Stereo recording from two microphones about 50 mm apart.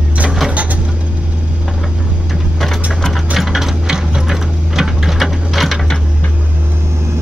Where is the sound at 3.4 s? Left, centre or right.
Centre.